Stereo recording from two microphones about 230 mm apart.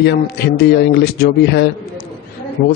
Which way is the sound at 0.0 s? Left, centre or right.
Left.